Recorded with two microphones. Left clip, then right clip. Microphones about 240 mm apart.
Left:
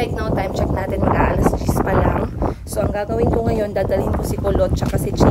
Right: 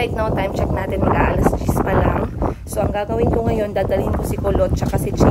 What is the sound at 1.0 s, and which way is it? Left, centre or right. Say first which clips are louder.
Speech: even; left.